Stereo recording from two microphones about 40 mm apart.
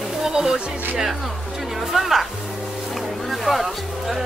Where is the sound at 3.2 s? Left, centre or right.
Centre.